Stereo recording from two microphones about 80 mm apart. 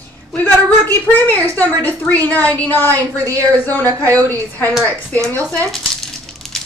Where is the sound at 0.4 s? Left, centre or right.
Left.